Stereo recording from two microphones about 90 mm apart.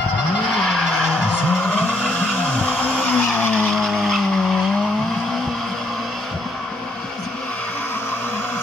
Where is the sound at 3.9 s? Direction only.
Centre (ahead or behind).